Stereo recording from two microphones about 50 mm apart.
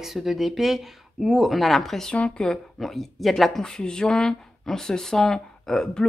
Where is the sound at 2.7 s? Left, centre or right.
Centre.